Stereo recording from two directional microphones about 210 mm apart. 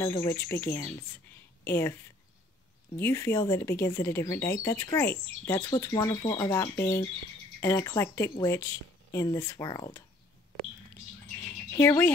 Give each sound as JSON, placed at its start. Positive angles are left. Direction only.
{"t": 0.0, "sound": "a woman's voice", "side_deg": 15}
{"t": 3.0, "sound": "speech", "side_deg": 15}
{"t": 11.7, "sound": "speech", "side_deg": 15}